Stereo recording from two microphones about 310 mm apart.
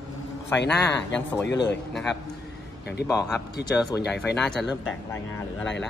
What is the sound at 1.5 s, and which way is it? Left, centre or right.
Speech, left.